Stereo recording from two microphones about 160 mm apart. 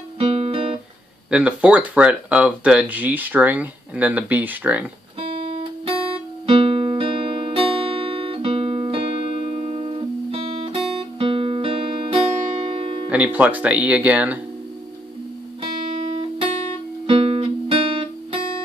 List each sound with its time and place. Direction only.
0.2 s music: 40° right (ahead or behind)
1.3 s speech: 5° right (ahead or behind)
5.2 s guitar: 35° right (ahead or behind)
13.1 s speech: 10° right (ahead or behind)
16.1 s music: 35° right (ahead or behind)
17.0 s guitar: 40° right (ahead or behind)